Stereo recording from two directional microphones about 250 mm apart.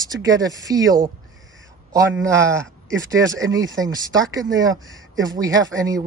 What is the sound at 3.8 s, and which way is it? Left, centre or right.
Speech, centre.